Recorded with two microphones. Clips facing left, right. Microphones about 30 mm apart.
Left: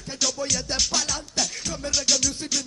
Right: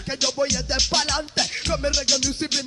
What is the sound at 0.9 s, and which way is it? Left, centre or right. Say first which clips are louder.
Music: right 4 dB; right.